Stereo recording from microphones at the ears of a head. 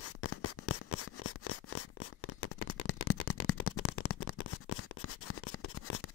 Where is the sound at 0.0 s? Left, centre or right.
Left.